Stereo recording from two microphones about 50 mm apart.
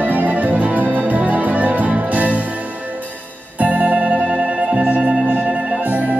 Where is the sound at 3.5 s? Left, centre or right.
Right.